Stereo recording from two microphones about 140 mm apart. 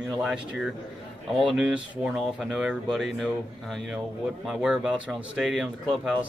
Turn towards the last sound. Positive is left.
turn(degrees=-5)  # may be behind; listen again after turning